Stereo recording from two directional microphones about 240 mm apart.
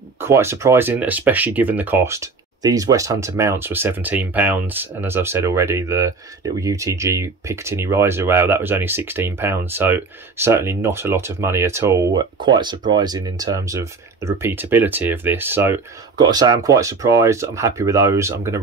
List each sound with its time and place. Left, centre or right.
0.2 s speech: centre